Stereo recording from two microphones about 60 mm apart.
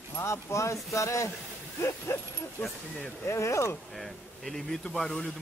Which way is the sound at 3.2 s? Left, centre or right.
Left.